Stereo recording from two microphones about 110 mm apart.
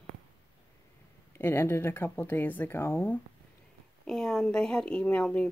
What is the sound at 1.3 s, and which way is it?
Speech, 20° left (ahead or behind).